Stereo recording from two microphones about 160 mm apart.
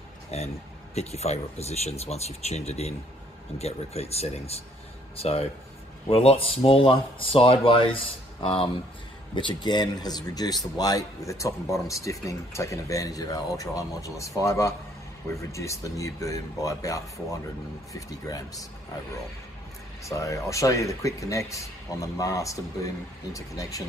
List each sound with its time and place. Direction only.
0.3 s speech: 40° left (ahead or behind); by 18.7 s 20° left (ahead or behind)
20.0 s speech: 20° left (ahead or behind)